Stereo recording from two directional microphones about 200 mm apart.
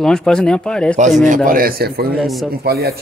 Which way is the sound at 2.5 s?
50° right (ahead or behind).